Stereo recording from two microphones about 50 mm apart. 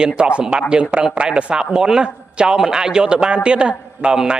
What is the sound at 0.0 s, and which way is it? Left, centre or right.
A man's voice, centre.